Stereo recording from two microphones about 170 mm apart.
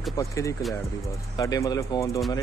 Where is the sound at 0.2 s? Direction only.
20° left (ahead or behind).